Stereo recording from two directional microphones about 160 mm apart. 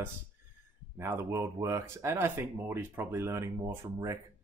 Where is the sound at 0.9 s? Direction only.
15° right (ahead or behind).